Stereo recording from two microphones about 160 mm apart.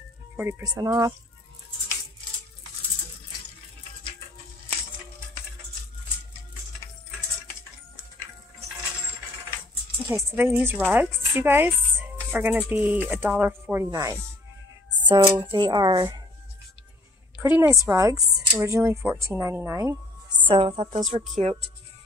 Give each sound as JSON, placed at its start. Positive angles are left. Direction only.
{"t": 0.4, "sound": "speech", "side_deg": -20}
{"t": 10.0, "sound": "speech", "side_deg": -15}
{"t": 17.4, "sound": "a woman's voice", "side_deg": -15}
{"t": 20.4, "sound": "a woman's voice", "side_deg": -35}